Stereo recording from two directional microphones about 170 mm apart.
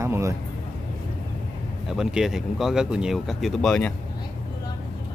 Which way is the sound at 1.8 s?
5° right (ahead or behind).